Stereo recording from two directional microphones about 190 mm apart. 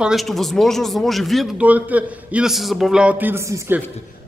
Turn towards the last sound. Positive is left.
turn(degrees=-10)  # may be behind; listen again after turning